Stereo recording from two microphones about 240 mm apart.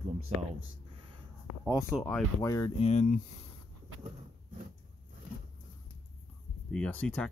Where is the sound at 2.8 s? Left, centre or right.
Left.